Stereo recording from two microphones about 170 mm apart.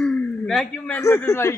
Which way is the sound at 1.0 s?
15° left (ahead or behind).